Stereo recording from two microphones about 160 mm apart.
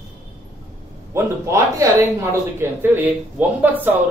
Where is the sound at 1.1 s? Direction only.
15° right (ahead or behind).